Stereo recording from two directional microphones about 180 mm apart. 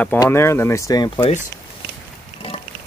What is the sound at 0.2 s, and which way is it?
Speech, 15° left (ahead or behind).